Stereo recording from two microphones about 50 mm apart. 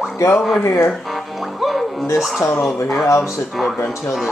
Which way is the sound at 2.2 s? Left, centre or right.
Centre.